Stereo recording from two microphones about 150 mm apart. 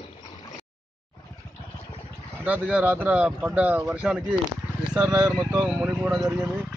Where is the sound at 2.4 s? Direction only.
10° right (ahead or behind).